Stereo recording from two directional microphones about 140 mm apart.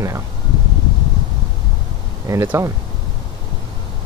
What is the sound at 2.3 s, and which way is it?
Speech, 20° right (ahead or behind).